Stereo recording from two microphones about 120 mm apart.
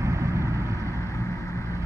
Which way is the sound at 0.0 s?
25° right (ahead or behind).